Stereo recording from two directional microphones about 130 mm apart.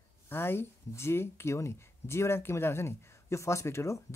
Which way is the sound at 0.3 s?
15° left (ahead or behind).